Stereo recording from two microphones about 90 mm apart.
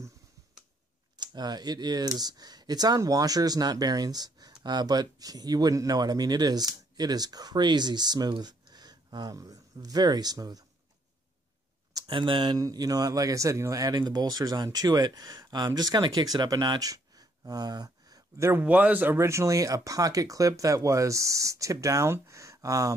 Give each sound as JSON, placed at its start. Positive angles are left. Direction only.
{"t": 1.1, "sound": "speech", "side_deg": -50}
{"t": 12.1, "sound": "speech", "side_deg": -65}
{"t": 12.5, "sound": "speech", "side_deg": -45}
{"t": 18.4, "sound": "speech", "side_deg": -25}